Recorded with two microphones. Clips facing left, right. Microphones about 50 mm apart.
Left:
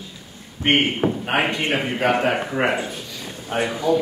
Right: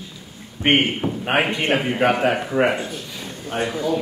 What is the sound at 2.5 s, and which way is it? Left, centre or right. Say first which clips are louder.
Speech: right 2 dB; centre.